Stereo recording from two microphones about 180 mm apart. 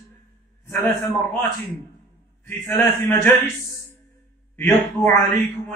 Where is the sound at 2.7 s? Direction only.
15° left (ahead or behind).